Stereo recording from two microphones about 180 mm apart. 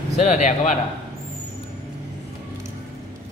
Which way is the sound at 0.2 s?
40° left (ahead or behind).